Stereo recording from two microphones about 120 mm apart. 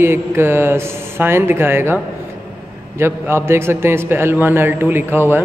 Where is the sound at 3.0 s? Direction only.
20° right (ahead or behind).